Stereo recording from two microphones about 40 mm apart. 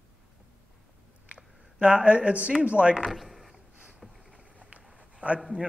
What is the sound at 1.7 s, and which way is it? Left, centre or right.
A man's voice, right.